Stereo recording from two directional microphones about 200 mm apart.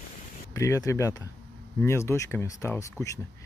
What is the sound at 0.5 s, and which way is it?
Speech, 15° left (ahead or behind).